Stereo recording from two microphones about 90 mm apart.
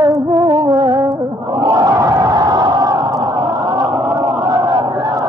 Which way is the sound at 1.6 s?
40° right (ahead or behind).